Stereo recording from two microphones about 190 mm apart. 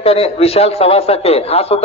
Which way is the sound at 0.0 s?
30° left (ahead or behind).